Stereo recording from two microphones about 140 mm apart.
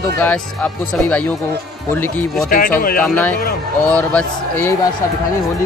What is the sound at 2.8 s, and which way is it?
Speech, 80° left.